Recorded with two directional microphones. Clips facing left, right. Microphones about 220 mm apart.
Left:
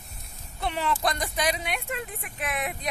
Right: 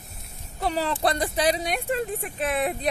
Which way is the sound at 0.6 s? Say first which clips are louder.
Right 3 dB; 35° right (ahead or behind).